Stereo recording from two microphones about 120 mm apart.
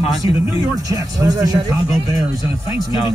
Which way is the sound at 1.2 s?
30° right (ahead or behind).